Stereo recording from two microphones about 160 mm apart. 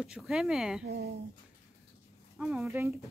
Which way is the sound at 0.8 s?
90° right.